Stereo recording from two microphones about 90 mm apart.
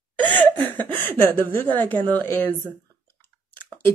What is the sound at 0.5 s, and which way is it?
Speech, 20° left (ahead or behind).